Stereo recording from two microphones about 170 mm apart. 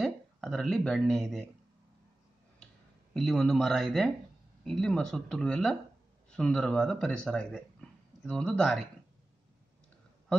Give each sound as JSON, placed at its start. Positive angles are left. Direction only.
{"t": 0.0, "sound": "speech", "side_deg": 0}
{"t": 3.2, "sound": "speech", "side_deg": 0}